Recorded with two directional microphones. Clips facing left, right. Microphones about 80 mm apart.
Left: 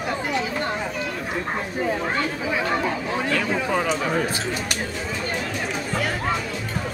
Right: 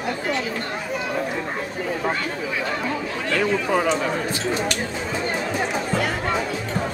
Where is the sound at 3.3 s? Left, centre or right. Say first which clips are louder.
Right 5 dB; centre.